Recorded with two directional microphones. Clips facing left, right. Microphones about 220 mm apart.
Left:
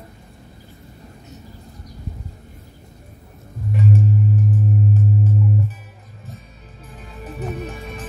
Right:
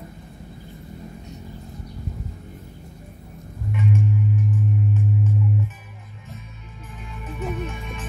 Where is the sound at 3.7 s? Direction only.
35° left (ahead or behind).